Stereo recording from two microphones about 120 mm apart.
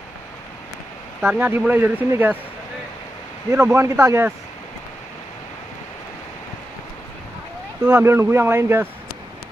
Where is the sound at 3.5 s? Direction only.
20° right (ahead or behind).